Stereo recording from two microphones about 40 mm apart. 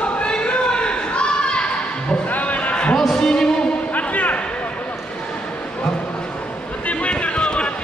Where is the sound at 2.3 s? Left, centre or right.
Left.